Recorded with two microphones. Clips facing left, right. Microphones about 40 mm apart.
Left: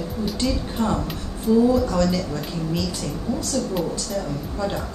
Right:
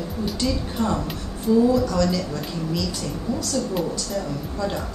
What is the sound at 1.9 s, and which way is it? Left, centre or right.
Speech, centre.